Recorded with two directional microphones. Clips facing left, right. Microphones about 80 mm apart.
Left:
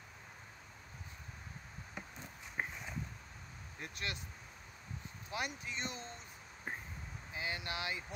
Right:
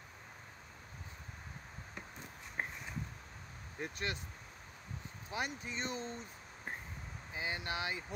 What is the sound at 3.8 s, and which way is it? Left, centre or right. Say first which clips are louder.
Speech: right 4 dB; right.